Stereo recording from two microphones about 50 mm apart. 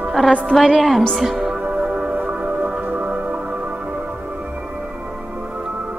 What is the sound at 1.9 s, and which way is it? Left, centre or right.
Music, right.